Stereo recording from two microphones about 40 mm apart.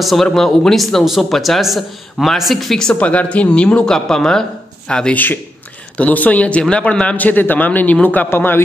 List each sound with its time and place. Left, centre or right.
0.0 s speech: centre
2.9 s speech: left
3.8 s speech: centre
5.1 s a man's voice: left
7.2 s speech: left